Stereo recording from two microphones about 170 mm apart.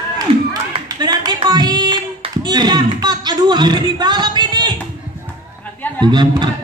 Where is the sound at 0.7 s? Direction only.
25° right (ahead or behind).